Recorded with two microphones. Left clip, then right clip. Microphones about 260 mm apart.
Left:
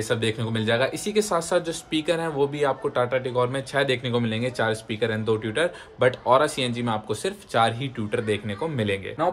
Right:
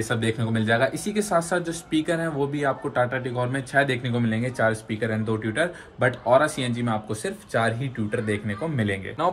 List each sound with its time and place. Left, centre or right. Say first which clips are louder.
0.1 s speech: left 2 dB; centre